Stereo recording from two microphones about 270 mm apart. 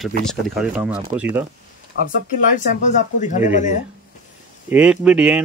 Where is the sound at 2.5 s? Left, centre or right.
Left.